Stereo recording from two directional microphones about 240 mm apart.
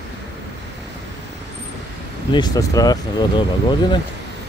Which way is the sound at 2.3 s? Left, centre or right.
Centre.